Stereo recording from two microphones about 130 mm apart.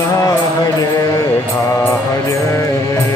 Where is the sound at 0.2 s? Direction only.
25° left (ahead or behind).